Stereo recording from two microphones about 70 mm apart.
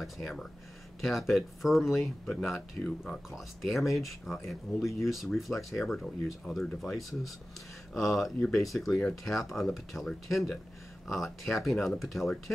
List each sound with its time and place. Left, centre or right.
0.0 s speech: centre